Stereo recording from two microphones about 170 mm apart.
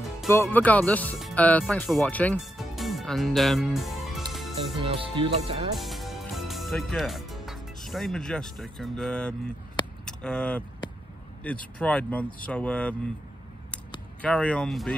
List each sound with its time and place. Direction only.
0.3 s speech: 15° left (ahead or behind)
2.3 s music: centre (ahead or behind)
4.8 s speech: 30° right (ahead or behind)
5.8 s music: centre (ahead or behind)
10.0 s speech: 5° left (ahead or behind)
14.2 s speech: 5° left (ahead or behind)